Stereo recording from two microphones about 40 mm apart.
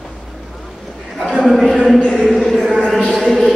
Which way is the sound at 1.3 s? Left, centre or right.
Centre.